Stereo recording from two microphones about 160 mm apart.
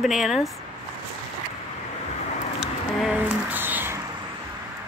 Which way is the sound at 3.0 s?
5° right (ahead or behind).